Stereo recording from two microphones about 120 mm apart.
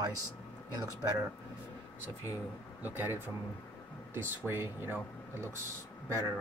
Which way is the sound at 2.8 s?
15° right (ahead or behind).